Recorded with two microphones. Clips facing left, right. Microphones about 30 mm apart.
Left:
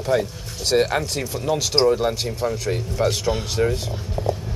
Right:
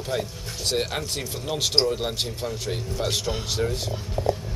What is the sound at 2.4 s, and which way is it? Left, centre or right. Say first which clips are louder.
Speech: left 10 dB; left.